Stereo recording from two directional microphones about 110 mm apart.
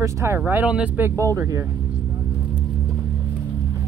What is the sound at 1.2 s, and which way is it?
Speech, 30° right (ahead or behind).